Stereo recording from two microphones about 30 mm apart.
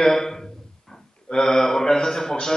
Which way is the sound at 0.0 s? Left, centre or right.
Centre.